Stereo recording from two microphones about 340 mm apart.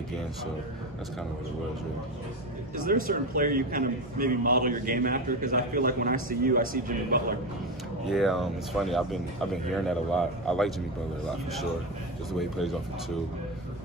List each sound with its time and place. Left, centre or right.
2.7 s a man's voice: right
8.1 s speech: centre
12.3 s speech: centre